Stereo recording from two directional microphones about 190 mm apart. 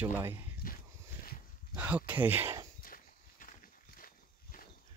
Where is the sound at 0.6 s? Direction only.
45° left (ahead or behind).